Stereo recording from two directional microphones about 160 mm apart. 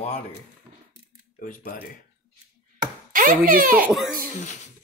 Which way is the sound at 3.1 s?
60° right (ahead or behind).